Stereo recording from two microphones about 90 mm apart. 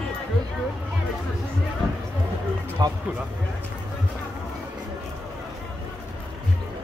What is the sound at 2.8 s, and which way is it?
Speech, 50° right (ahead or behind).